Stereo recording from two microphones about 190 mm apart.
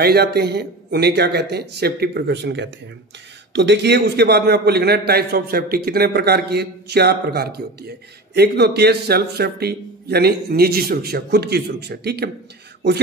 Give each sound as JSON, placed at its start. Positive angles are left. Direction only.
{"t": 0.0, "sound": "a man's voice", "side_deg": -55}